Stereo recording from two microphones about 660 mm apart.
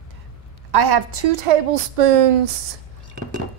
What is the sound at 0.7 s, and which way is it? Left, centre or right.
A woman's voice, right.